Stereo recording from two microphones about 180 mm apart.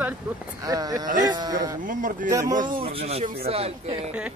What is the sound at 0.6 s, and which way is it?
Speech, 20° right (ahead or behind).